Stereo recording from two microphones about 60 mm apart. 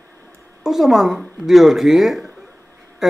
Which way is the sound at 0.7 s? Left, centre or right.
Centre.